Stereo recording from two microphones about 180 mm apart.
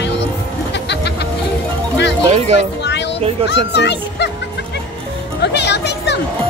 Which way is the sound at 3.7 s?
70° left (ahead or behind).